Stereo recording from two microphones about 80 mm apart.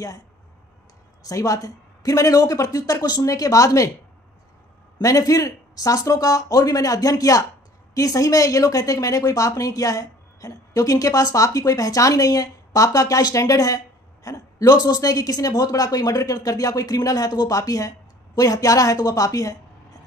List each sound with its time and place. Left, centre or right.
1.2 s a woman's voice: left
5.0 s a woman's voice: left